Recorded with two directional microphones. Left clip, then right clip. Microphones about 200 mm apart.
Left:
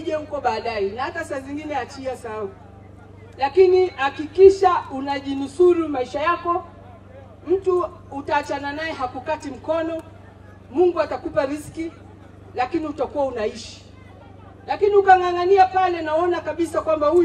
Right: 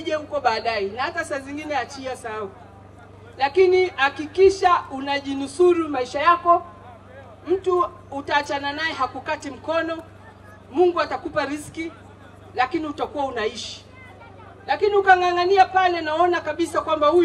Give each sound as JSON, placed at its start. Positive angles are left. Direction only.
{"t": 0.0, "sound": "a woman's voice", "side_deg": -25}
{"t": 14.7, "sound": "a woman's voice", "side_deg": -25}